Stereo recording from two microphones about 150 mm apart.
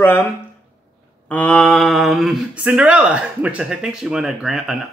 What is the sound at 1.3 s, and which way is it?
Speech, 10° left (ahead or behind).